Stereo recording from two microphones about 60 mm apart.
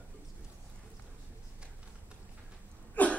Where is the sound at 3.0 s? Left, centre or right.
Left.